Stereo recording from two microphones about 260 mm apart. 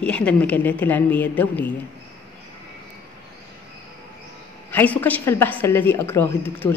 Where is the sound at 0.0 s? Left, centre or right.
Centre.